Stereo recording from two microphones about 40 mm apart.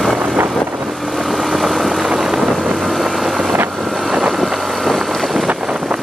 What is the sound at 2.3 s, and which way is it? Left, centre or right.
Vehicle, centre.